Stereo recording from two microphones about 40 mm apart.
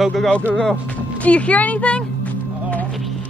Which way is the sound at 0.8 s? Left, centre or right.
Left.